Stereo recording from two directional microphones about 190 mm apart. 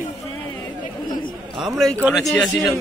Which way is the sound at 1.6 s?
Centre (ahead or behind).